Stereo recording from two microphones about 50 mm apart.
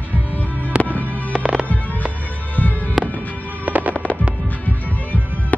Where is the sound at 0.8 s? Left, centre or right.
Left.